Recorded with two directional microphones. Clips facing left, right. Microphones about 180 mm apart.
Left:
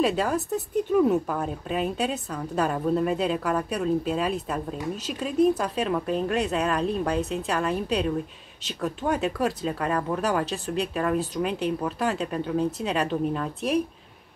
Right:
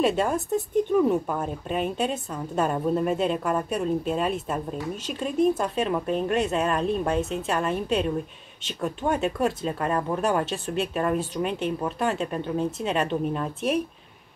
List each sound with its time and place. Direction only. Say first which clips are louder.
0.0 s a woman's voice: right 1 dB; centre (ahead or behind)